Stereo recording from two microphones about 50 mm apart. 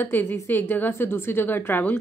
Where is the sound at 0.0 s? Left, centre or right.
Left.